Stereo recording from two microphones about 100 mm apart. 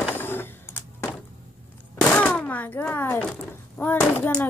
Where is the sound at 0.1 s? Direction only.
20° left (ahead or behind).